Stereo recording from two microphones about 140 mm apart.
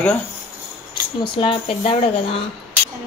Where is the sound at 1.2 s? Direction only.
35° left (ahead or behind).